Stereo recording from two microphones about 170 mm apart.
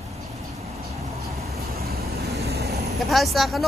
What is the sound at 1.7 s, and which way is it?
Vehicle, 65° right (ahead or behind).